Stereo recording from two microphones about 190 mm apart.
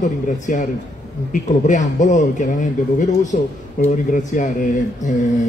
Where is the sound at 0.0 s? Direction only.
40° left (ahead or behind).